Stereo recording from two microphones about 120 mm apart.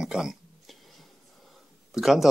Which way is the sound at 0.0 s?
5° right (ahead or behind).